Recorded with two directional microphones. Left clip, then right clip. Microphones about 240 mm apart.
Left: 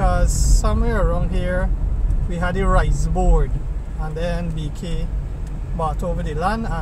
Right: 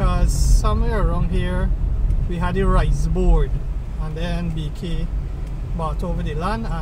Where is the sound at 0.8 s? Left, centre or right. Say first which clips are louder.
Left 3 dB; centre.